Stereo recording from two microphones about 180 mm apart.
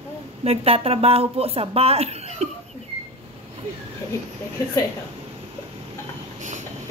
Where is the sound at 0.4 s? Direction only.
35° right (ahead or behind).